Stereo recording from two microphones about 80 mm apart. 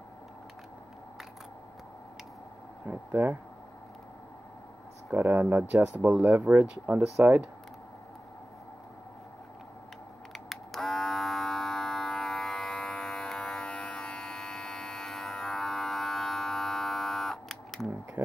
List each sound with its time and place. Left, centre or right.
2.9 s speech: right
5.1 s speech: right
10.3 s a sound: centre